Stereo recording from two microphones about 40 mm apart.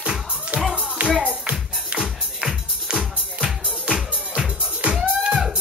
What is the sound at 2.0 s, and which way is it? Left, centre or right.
Music, centre.